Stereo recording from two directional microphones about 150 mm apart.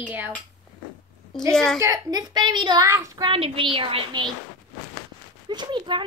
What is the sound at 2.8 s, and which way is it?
Speech, 20° right (ahead or behind).